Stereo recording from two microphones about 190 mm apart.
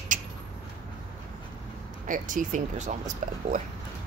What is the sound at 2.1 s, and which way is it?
Speech, 45° right (ahead or behind).